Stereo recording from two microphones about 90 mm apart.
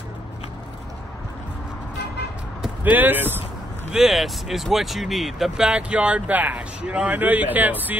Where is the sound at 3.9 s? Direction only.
5° right (ahead or behind); by 8.0 s 20° right (ahead or behind).